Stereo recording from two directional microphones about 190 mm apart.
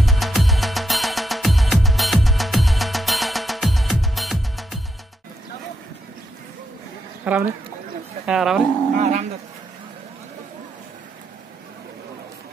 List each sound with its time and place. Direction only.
0.0 s music: centre (ahead or behind)
7.2 s speech: 5° right (ahead or behind)
9.0 s speech: 35° right (ahead or behind)